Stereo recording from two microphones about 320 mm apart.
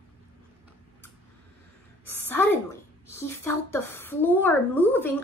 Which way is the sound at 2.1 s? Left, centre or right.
Centre.